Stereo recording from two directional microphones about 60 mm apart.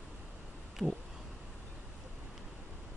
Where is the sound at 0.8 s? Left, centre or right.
Left.